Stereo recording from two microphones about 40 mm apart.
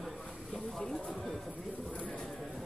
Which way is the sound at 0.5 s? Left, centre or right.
Centre.